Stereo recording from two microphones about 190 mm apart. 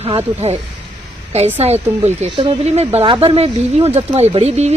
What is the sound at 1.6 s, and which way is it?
Speech, 35° right (ahead or behind).